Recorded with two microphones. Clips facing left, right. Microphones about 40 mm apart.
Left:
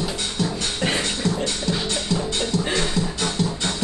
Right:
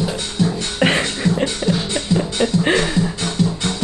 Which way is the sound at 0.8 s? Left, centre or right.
Right.